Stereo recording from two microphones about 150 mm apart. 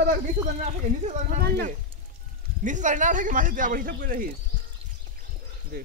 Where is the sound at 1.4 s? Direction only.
90° right.